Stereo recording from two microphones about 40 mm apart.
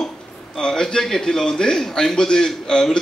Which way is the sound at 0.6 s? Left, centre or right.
Centre.